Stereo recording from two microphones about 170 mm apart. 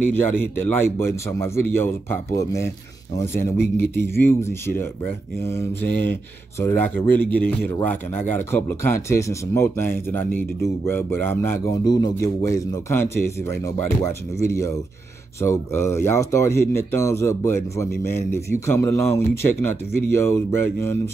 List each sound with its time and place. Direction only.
0.1 s a man's voice: 10° left (ahead or behind)
11.8 s a man's voice: 25° left (ahead or behind)